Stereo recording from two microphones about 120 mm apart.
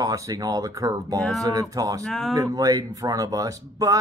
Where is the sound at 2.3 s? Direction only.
30° right (ahead or behind).